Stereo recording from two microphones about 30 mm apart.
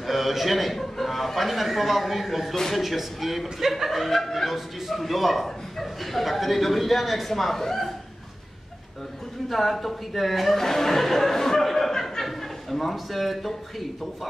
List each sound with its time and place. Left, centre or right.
0.0 s a man's voice: centre
9.5 s a man's voice: centre
10.6 s speech: centre
12.0 s chuckle: centre
12.9 s a man's voice: centre